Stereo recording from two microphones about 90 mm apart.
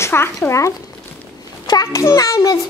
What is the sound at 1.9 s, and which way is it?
Speech, 35° left (ahead or behind).